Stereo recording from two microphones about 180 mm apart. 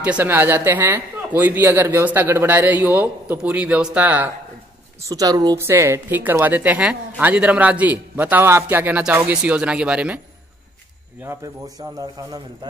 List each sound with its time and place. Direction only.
0.0 s a woman's voice: 10° right (ahead or behind)
5.0 s a woman's voice: 20° right (ahead or behind)
11.2 s speech: 20° right (ahead or behind)